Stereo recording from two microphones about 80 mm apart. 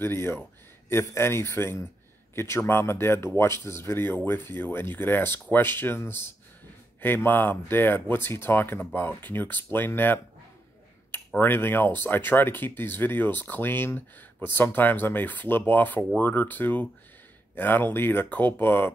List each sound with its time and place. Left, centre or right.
0.0 s speech: left